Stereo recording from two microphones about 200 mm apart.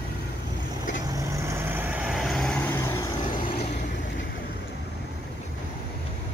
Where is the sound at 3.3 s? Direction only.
30° left (ahead or behind).